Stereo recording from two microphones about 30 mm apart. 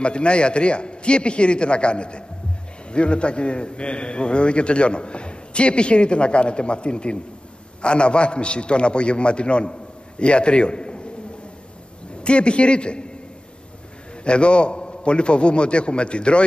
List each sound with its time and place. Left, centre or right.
0.0 s a man's voice: left
12.2 s a man's voice: left
14.2 s a man's voice: left